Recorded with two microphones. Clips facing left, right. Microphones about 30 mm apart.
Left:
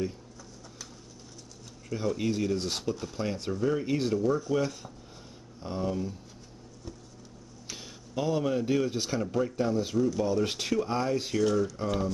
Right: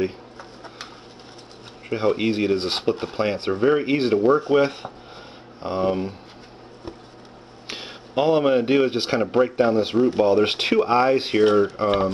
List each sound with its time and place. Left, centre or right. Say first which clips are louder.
1.9 s a man's voice: right 9 dB; right
7.6 s a man's voice: right 9 dB; right